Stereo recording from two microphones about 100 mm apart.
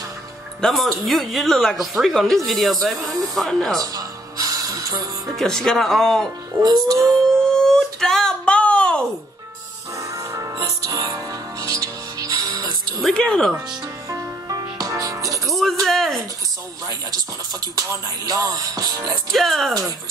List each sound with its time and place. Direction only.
0.6 s a woman's voice: centre (ahead or behind)
3.7 s music: 35° right (ahead or behind)
5.3 s a woman's voice: 5° left (ahead or behind)
6.6 s speech: 40° right (ahead or behind)
7.4 s a sound: 5° left (ahead or behind)
9.9 s music: 30° right (ahead or behind)
12.3 s music: 50° right (ahead or behind)
13.0 s a woman's voice: 5° left (ahead or behind)
14.0 s music: 35° right (ahead or behind)
15.4 s music: centre (ahead or behind)
16.8 s speech: 35° right (ahead or behind)
19.3 s a woman's voice: centre (ahead or behind)